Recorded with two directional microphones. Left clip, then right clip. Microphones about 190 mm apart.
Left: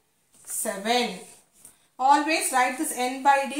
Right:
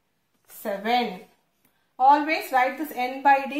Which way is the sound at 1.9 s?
35° right (ahead or behind).